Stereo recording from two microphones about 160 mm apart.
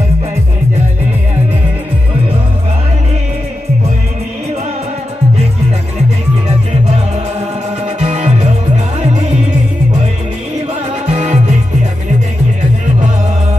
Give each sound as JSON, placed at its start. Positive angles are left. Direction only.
{"t": 6.7, "sound": "music", "side_deg": -45}
{"t": 10.7, "sound": "music", "side_deg": -45}